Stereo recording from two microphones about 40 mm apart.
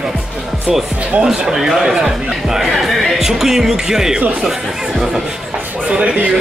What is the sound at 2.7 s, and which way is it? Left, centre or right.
Speech, centre.